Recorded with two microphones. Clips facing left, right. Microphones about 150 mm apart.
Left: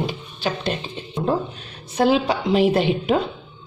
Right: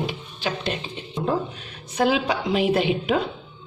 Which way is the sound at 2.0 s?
35° left (ahead or behind).